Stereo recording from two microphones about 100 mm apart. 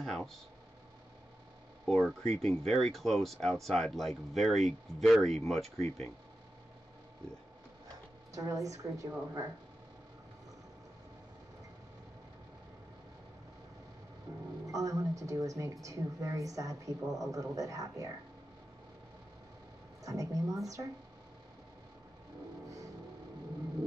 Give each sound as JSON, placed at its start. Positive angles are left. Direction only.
{"t": 0.0, "sound": "speech", "side_deg": 5}
{"t": 1.9, "sound": "speech", "side_deg": 0}
{"t": 8.3, "sound": "a woman's voice", "side_deg": -35}
{"t": 14.7, "sound": "a woman's voice", "side_deg": -35}
{"t": 20.0, "sound": "a woman's voice", "side_deg": -35}